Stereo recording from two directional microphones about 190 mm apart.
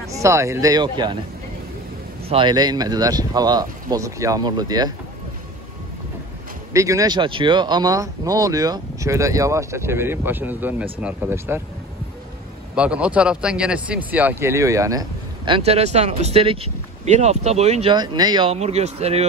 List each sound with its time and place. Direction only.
0.1 s speech: 15° right (ahead or behind)
2.2 s speech: 25° right (ahead or behind)
6.7 s speech: 15° right (ahead or behind)
12.7 s speech: 5° right (ahead or behind); by 19.2 s 35° right (ahead or behind)